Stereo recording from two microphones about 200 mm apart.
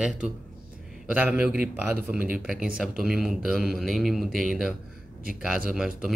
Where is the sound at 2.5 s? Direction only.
45° right (ahead or behind).